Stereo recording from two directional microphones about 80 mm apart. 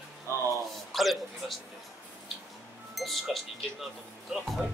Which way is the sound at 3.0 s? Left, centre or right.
Centre.